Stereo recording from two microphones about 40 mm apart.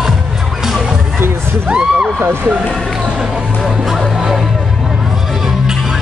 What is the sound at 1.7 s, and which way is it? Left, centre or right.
Heart sounds, right.